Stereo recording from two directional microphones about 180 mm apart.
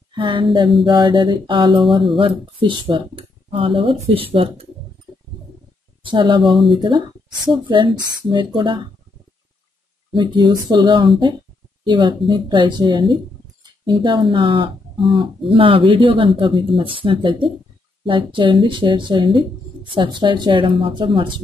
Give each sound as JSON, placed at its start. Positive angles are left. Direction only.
{"t": 0.1, "sound": "a sound", "side_deg": -25}
{"t": 0.8, "sound": "speech", "side_deg": -25}
{"t": 6.0, "sound": "speech", "side_deg": -25}
{"t": 6.4, "sound": "speech", "side_deg": 0}
{"t": 6.8, "sound": "speech", "side_deg": -25}
{"t": 10.1, "sound": "speech", "side_deg": -25}